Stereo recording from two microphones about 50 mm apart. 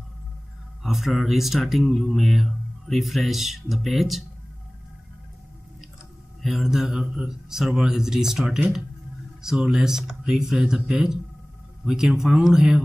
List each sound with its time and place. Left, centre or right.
0.8 s mantra: centre
6.4 s a man's voice: centre
9.7 s a man's voice: centre